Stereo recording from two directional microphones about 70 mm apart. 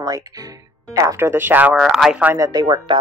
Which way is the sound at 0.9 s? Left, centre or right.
Right.